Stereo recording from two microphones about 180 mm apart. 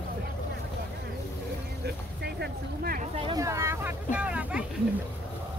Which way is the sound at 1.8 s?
65° right (ahead or behind).